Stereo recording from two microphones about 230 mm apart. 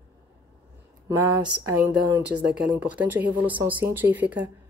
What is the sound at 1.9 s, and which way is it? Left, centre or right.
Speech, centre.